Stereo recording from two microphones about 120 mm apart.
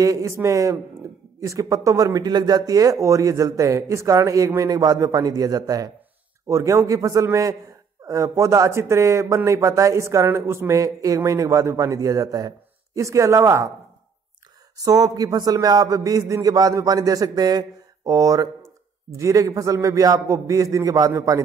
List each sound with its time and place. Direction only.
0.0 s a man's voice: 25° right (ahead or behind)
14.8 s a man's voice: 30° right (ahead or behind)